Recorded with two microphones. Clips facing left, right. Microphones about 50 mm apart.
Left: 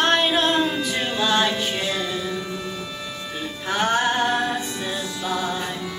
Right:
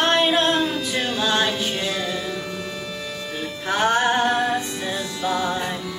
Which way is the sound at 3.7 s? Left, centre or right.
Centre.